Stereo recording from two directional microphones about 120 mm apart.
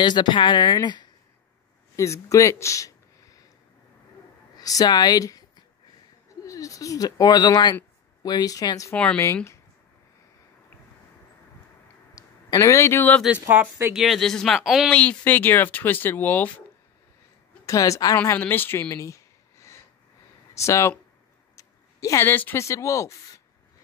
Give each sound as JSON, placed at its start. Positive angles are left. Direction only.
{"t": 0.0, "sound": "speech", "side_deg": 40}
{"t": 2.0, "sound": "speech", "side_deg": 25}
{"t": 4.6, "sound": "speech", "side_deg": 30}
{"t": 6.4, "sound": "speech", "side_deg": 25}
{"t": 8.9, "sound": "speech", "side_deg": 10}
{"t": 9.2, "sound": "a woman's voice", "side_deg": 25}
{"t": 12.2, "sound": "speech", "side_deg": 30}
{"t": 13.2, "sound": "speech", "side_deg": -10}
{"t": 13.9, "sound": "speech", "side_deg": 0}
{"t": 14.9, "sound": "speech", "side_deg": 10}
{"t": 17.6, "sound": "a woman's voice", "side_deg": 25}